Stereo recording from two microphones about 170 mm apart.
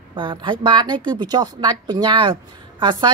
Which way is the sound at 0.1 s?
30° right (ahead or behind).